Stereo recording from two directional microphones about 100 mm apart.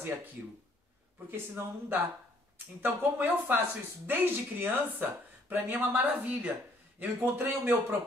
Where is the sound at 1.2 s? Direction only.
20° right (ahead or behind).